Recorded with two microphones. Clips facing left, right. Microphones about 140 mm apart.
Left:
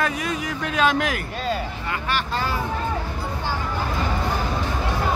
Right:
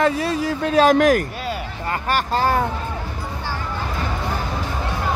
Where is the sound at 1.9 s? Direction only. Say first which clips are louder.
Right 5 dB; 45° right (ahead or behind).